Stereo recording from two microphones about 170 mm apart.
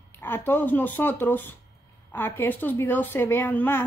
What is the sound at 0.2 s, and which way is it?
A woman's voice, 10° left (ahead or behind).